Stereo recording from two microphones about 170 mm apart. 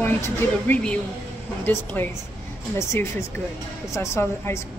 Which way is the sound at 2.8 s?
15° left (ahead or behind).